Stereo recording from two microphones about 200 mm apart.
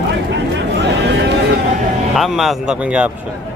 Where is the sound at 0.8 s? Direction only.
55° right (ahead or behind).